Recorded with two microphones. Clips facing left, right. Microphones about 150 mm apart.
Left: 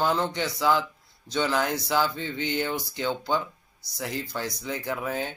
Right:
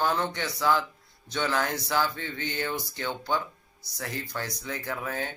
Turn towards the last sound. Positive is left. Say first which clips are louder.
# left 3 dB
turn(degrees=15)  # may be behind; listen again after turning